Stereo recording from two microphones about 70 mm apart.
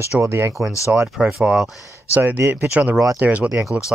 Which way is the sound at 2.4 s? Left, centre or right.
Right.